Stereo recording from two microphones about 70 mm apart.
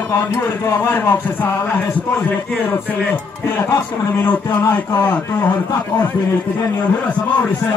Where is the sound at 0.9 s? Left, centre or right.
Left.